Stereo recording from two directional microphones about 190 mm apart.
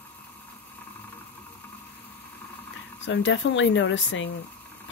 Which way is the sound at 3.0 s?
75° left (ahead or behind).